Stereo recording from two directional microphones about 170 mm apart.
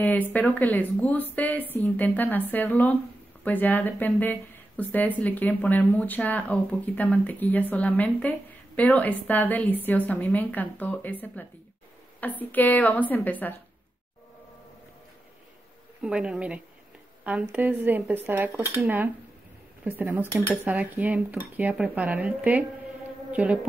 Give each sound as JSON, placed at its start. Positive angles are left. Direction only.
{"t": 0.3, "sound": "speech", "side_deg": 10}
{"t": 16.0, "sound": "speech", "side_deg": -5}